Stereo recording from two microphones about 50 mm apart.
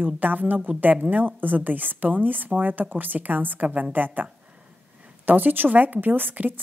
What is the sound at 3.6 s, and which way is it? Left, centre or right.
Speech, right.